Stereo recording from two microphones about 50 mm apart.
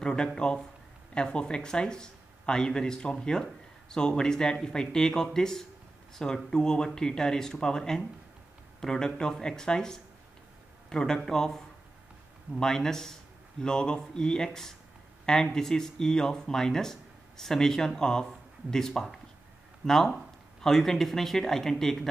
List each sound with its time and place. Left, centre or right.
0.0 s a man's voice: centre